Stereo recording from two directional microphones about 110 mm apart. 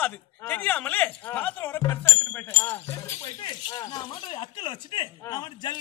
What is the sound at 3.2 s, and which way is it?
Speech, 45° left (ahead or behind).